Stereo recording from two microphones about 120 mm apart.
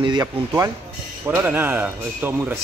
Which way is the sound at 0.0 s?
35° right (ahead or behind).